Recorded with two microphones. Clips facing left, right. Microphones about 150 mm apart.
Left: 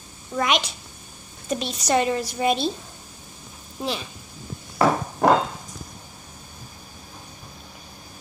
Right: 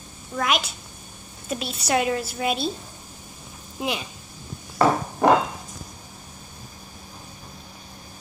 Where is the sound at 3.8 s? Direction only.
15° right (ahead or behind).